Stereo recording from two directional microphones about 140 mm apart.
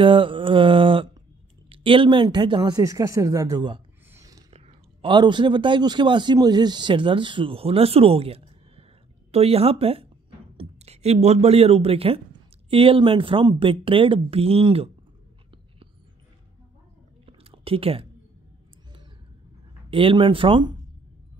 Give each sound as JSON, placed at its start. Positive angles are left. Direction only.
{"t": 0.0, "sound": "mantra", "side_deg": -35}
{"t": 1.7, "sound": "speech", "side_deg": -40}
{"t": 4.1, "sound": "a sound", "side_deg": -25}
{"t": 4.5, "sound": "a man's voice", "side_deg": -40}
{"t": 17.3, "sound": "whispering", "side_deg": -45}
{"t": 19.9, "sound": "speech", "side_deg": -40}